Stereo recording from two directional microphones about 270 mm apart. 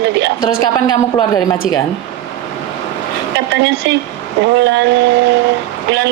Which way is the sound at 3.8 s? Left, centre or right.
Right.